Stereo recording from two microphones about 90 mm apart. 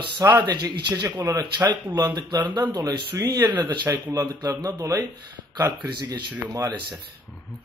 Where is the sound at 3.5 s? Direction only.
55° right (ahead or behind).